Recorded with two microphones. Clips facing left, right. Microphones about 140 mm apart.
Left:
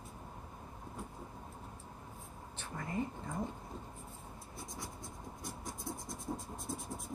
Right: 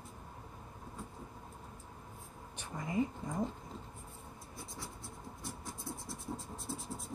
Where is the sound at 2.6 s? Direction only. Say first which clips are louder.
Right 4 dB; 15° right (ahead or behind).